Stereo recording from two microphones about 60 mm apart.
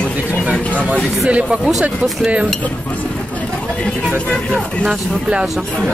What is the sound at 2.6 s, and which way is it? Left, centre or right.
Chatter, left.